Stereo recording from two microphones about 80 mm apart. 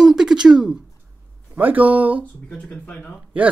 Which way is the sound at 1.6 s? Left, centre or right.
Right.